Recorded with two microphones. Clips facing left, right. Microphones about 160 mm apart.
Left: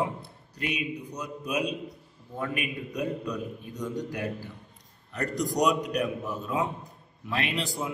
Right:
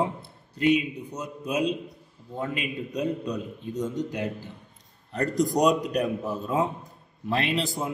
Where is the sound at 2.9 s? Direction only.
20° right (ahead or behind).